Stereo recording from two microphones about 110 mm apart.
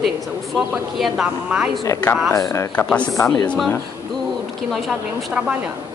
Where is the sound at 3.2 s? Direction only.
25° left (ahead or behind).